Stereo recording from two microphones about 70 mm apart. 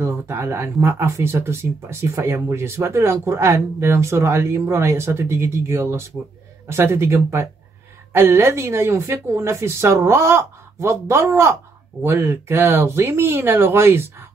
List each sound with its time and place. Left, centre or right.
0.0 s speech: right